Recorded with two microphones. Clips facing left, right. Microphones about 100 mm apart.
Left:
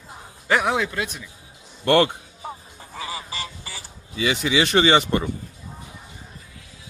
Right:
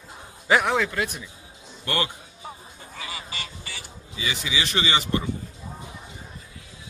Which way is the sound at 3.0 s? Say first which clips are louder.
Left 4 dB; 30° left (ahead or behind).